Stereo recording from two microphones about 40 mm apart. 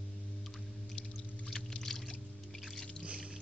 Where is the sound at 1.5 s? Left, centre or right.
Centre.